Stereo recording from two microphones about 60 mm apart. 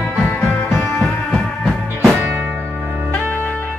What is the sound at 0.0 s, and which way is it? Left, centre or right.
Music, centre.